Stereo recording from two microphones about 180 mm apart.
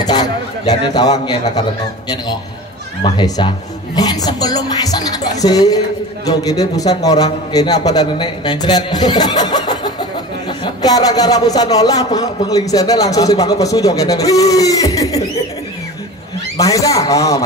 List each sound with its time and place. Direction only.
0.0 s a sound: 20° left (ahead or behind)
3.0 s a man's voice: 25° left (ahead or behind)
16.5 s a man's voice: 20° left (ahead or behind)